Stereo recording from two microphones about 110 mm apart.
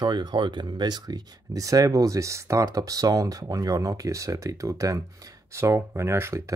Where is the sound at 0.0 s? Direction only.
45° right (ahead or behind).